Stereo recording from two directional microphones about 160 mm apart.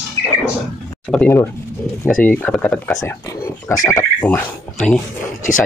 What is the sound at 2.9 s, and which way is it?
Speech, 20° left (ahead or behind).